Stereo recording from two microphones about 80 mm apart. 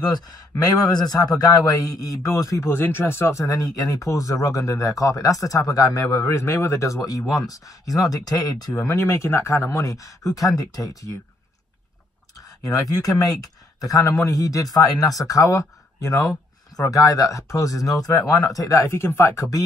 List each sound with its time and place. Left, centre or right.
0.1 s speech: left
2.6 s speech: left
12.4 s a sound: left
12.9 s speech: left